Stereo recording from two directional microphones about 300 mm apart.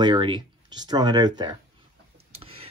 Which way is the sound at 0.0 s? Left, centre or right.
Centre.